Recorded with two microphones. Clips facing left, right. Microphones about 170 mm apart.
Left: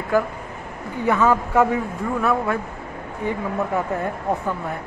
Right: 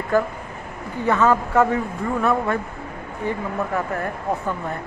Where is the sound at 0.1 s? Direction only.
10° left (ahead or behind).